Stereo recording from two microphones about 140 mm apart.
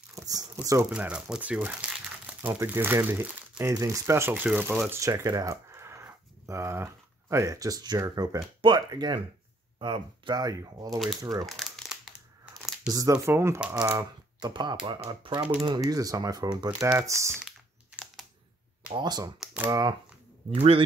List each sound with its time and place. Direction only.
0.1 s a sound: 25° right (ahead or behind)
0.8 s speech: 10° right (ahead or behind)
3.7 s speech: 25° right (ahead or behind)
11.4 s crumpling: centre (ahead or behind)
12.9 s speech: 25° right (ahead or behind)
13.9 s speech: 30° right (ahead or behind)
17.5 s computer keyboard: centre (ahead or behind)
18.9 s speech: 30° right (ahead or behind)
19.4 s speech: 10° right (ahead or behind)
19.7 s speech: 30° right (ahead or behind)
20.5 s a man's voice: 45° right (ahead or behind)